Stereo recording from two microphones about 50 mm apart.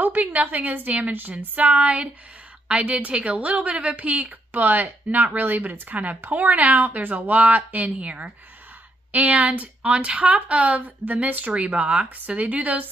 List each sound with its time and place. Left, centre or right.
0.0 s speech: right